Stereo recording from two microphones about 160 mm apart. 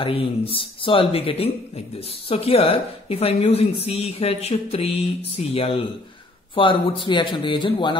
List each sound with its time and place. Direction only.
0.0 s a woman's voice: 35° left (ahead or behind)